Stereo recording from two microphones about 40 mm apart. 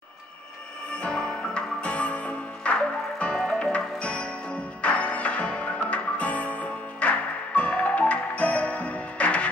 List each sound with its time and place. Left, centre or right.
0.9 s music: left